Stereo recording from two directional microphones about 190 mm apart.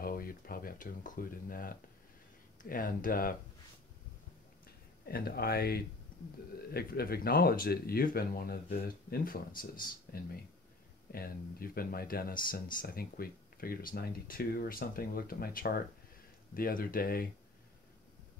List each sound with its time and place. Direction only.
0.0 s speech: 50° left (ahead or behind)
5.0 s speech: 55° left (ahead or behind)
11.1 s speech: 50° left (ahead or behind)